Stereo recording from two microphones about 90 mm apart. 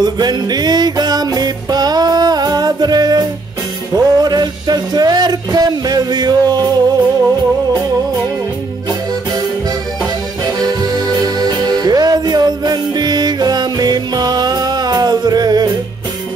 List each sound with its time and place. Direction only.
0.0 s music: 50° right (ahead or behind)
10.4 s music: 45° right (ahead or behind)